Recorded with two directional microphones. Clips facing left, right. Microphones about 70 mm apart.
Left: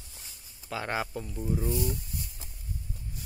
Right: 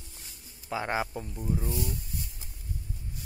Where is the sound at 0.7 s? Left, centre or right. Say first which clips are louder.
Right 2 dB; centre.